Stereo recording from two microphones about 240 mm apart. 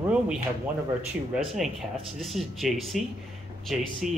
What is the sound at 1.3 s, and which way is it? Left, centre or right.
Speech, centre.